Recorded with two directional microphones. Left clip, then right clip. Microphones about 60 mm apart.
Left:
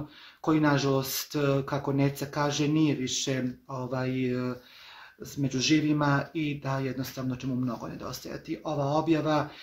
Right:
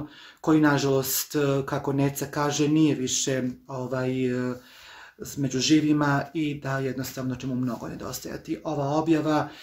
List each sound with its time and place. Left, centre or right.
0.4 s speech: right